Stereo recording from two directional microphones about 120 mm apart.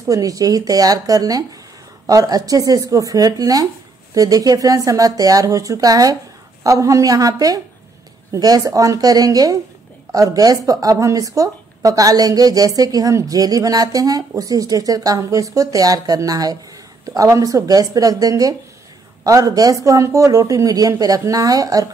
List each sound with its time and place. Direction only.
0.1 s speech: 30° right (ahead or behind)